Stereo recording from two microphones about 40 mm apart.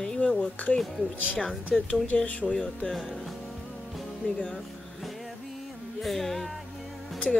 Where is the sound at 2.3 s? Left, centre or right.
Left.